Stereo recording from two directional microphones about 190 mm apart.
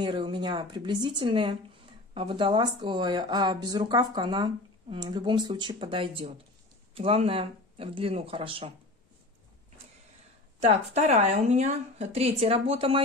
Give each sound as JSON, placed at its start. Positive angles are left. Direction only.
{"t": 0.0, "sound": "speech", "side_deg": -25}
{"t": 10.6, "sound": "a woman's voice", "side_deg": -35}